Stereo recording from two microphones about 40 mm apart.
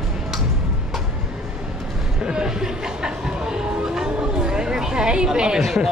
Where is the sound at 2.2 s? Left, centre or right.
Centre.